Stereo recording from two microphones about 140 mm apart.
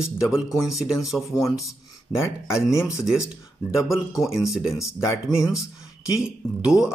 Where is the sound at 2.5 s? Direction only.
20° left (ahead or behind).